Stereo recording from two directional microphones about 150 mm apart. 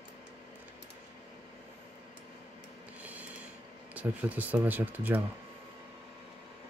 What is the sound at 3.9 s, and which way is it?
Speech, 10° right (ahead or behind).